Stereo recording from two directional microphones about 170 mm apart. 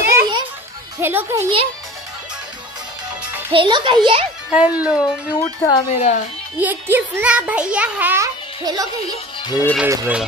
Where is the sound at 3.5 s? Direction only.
30° right (ahead or behind).